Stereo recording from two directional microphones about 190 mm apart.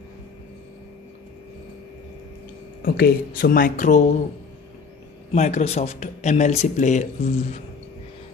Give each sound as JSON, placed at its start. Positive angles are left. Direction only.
{"t": 2.8, "sound": "speech", "side_deg": 50}
{"t": 5.3, "sound": "speech", "side_deg": 35}